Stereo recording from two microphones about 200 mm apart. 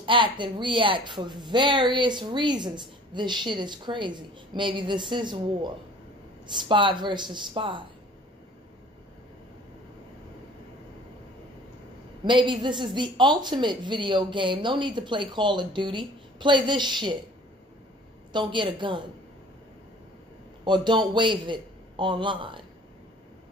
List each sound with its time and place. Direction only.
0.0 s a woman's voice: 25° right (ahead or behind)
12.3 s a woman's voice: 25° right (ahead or behind)
18.3 s a woman's voice: 25° right (ahead or behind)
20.6 s a woman's voice: 20° right (ahead or behind)